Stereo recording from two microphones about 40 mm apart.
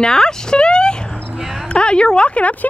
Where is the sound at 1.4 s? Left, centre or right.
Centre.